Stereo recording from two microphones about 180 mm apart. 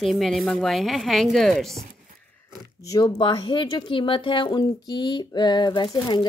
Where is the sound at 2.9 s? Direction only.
25° left (ahead or behind).